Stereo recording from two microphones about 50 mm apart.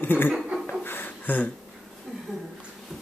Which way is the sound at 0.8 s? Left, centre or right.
Left.